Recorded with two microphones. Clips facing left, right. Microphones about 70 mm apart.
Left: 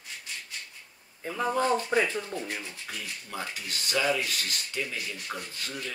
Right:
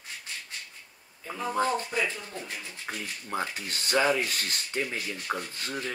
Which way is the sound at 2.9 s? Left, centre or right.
Right.